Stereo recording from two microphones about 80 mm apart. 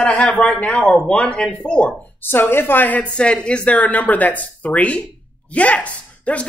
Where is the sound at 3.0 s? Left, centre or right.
Centre.